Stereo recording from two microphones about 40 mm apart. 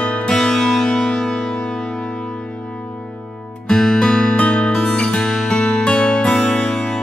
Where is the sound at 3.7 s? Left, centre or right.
Centre.